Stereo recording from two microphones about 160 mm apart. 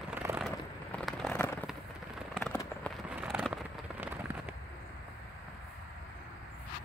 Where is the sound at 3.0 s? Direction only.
5° right (ahead or behind).